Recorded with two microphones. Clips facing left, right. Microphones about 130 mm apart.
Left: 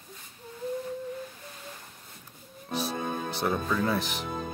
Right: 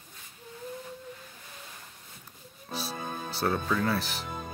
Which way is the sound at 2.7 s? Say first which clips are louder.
Left 5 dB; 20° left (ahead or behind).